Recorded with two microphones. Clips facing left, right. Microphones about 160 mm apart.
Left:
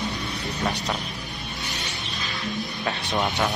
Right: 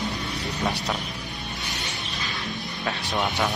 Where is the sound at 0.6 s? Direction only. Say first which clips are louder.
Even; centre (ahead or behind).